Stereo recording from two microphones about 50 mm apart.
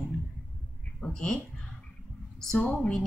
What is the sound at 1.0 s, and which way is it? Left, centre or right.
Speech, centre.